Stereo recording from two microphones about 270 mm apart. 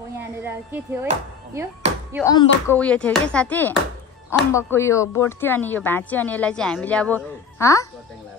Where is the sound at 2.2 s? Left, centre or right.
Centre.